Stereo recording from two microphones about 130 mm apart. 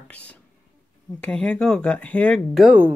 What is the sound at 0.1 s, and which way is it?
Speech, 10° left (ahead or behind).